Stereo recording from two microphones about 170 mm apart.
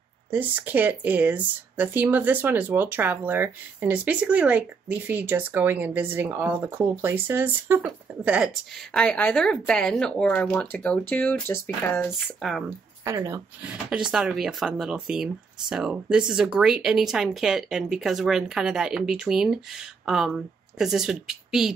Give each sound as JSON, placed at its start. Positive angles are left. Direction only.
{"t": 0.3, "sound": "speech", "side_deg": -10}
{"t": 8.9, "sound": "speech", "side_deg": 5}
{"t": 12.6, "sound": "speech", "side_deg": -15}
{"t": 13.8, "sound": "speech", "side_deg": -5}